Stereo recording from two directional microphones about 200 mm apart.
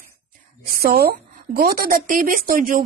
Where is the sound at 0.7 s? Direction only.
50° right (ahead or behind).